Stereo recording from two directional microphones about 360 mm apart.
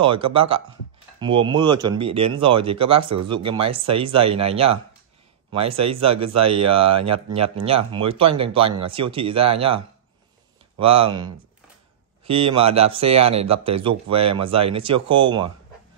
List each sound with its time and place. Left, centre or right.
0.0 s speech: centre
6.9 s speech: right
7.3 s speech: centre
10.8 s speech: centre